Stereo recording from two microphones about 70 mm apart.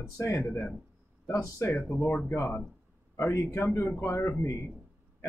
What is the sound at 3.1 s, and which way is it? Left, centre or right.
A man's voice, left.